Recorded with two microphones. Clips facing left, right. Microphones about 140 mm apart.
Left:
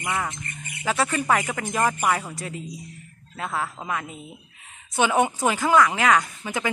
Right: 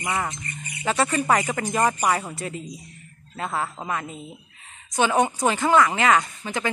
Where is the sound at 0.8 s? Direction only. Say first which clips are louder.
Right 1 dB; centre (ahead or behind).